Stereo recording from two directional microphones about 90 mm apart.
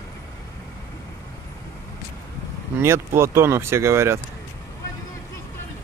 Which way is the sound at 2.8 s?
30° right (ahead or behind).